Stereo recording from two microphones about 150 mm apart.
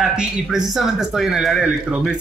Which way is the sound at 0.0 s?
5° right (ahead or behind).